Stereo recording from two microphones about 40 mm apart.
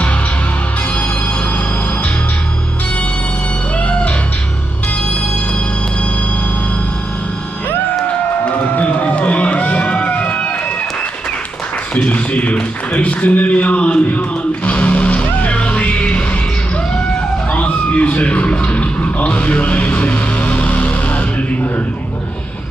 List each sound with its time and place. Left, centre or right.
3.7 s music: left
8.5 s music: left
12.0 s a sound: left
12.9 s a man's voice: left
14.0 s music: left
17.5 s a sound: left